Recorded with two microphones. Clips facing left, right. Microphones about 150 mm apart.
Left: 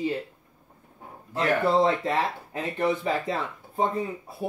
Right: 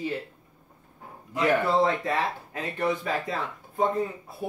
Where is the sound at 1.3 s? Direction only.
25° left (ahead or behind).